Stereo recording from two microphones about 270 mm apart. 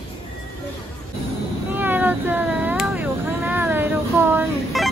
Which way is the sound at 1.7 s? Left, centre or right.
Centre.